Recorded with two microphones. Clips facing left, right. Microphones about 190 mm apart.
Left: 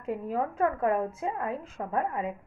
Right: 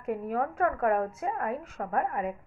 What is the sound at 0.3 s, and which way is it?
A woman's voice, 20° left (ahead or behind).